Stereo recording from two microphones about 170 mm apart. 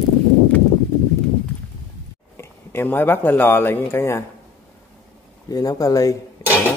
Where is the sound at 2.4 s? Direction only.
10° left (ahead or behind).